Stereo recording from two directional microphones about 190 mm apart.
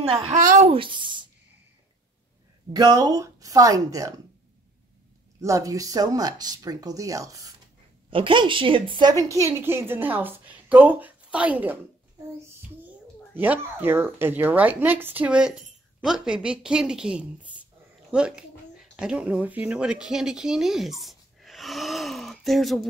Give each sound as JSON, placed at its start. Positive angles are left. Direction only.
{"t": 0.0, "sound": "a woman's voice", "side_deg": -30}
{"t": 0.7, "sound": "speech", "side_deg": -25}
{"t": 2.7, "sound": "a woman's voice", "side_deg": -20}
{"t": 5.4, "sound": "a woman's voice", "side_deg": -15}
{"t": 9.3, "sound": "a woman's voice", "side_deg": -15}
{"t": 13.3, "sound": "a woman's voice", "side_deg": -10}